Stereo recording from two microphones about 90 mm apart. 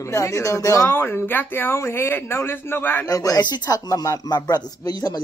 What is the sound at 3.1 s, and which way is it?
Speech, 40° left (ahead or behind).